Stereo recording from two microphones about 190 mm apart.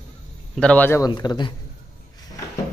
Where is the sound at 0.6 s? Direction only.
5° left (ahead or behind); by 1.5 s 20° left (ahead or behind).